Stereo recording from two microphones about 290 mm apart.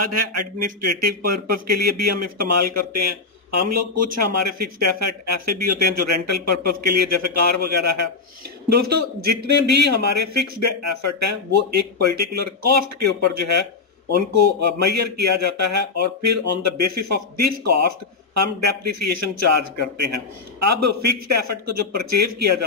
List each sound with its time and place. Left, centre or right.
0.0 s speech: right